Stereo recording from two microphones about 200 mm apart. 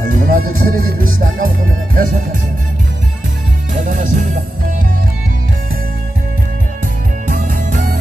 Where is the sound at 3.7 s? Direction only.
40° right (ahead or behind).